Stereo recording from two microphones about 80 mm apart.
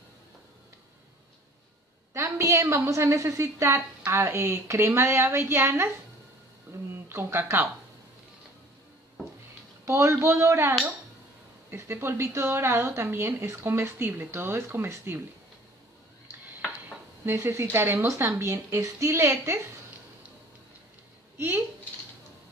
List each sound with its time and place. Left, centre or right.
2.1 s a woman's voice: right
6.9 s speech: right
9.8 s a woman's voice: right
17.3 s a woman's voice: right
21.4 s speech: right